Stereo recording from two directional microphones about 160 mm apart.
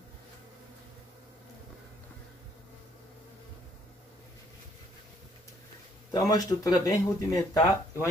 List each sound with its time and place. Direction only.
6.1 s speech: 20° left (ahead or behind)